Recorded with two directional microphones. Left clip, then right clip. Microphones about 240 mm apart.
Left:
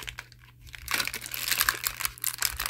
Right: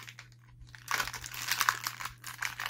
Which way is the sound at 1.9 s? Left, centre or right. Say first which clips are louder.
Left 7 dB; left.